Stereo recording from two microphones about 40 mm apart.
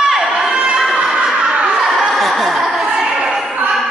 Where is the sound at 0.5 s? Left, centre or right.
Centre.